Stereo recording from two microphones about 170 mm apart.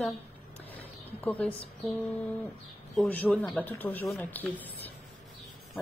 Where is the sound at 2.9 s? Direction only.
5° left (ahead or behind).